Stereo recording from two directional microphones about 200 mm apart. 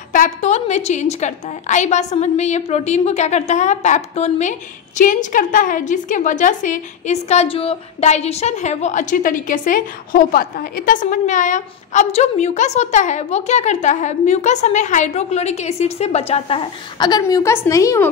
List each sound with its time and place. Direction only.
0.1 s a woman's voice: 40° left (ahead or behind); by 18.0 s 15° left (ahead or behind)